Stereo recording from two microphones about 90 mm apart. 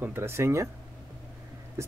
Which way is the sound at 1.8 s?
30° right (ahead or behind).